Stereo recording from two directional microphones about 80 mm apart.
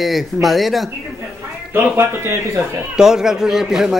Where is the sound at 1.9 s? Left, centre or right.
Right.